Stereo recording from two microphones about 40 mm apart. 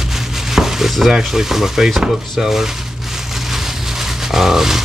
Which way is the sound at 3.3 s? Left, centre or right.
Centre.